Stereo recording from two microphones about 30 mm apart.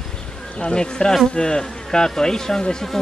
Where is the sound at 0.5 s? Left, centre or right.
Left.